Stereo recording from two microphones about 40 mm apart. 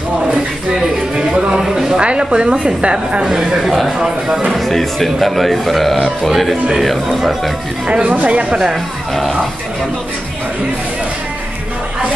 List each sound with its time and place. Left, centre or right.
1.1 s a sound: centre
2.0 s a woman's voice: right
3.3 s speech: centre
4.6 s speech: centre
7.9 s speech: right